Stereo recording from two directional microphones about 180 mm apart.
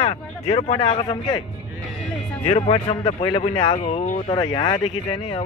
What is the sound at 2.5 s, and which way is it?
Speech, 30° left (ahead or behind).